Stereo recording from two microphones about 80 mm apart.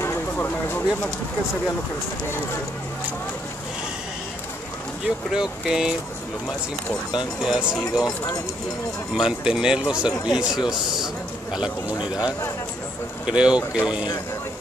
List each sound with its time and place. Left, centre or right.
0.0 s a sound: left
5.0 s speech: centre
7.4 s speech: centre
9.1 s speech: centre